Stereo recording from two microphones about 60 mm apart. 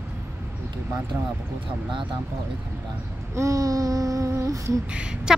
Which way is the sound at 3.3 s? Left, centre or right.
Right.